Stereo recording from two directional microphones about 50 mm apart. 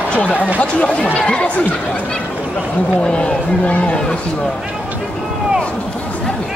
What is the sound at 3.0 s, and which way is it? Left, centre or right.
Speech, centre.